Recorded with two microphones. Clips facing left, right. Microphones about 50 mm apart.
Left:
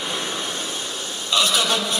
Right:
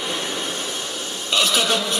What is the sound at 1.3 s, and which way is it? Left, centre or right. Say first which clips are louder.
Speech: even; right.